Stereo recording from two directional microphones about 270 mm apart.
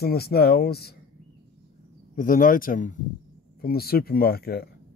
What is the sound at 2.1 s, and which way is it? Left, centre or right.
Speech, left.